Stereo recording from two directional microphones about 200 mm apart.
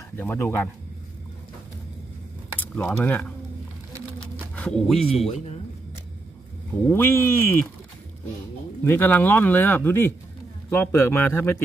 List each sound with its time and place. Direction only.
0.2 s speech: 10° left (ahead or behind)
2.6 s speech: 10° left (ahead or behind)
4.6 s speech: 5° left (ahead or behind)
5.1 s speech: 30° left (ahead or behind)
6.9 s speech: 10° left (ahead or behind)
8.8 s speech: 10° left (ahead or behind)